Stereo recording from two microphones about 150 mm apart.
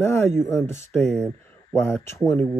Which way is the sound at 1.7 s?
10° left (ahead or behind).